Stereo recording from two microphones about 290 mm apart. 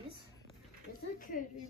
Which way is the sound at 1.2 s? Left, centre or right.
Left.